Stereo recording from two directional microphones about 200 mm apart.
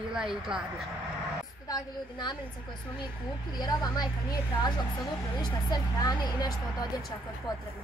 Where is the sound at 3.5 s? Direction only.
20° left (ahead or behind).